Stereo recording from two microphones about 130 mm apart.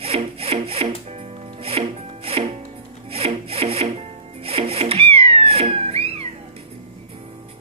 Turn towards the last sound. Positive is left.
turn(degrees=-50)  # may be behind; listen again after turning